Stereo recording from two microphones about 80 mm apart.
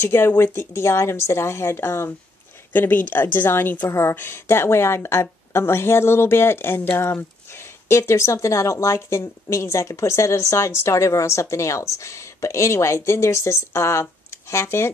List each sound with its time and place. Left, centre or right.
0.0 s a woman's voice: left